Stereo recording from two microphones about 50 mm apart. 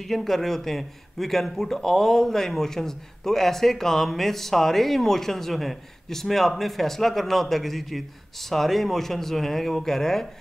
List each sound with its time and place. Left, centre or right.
0.0 s a man's voice: centre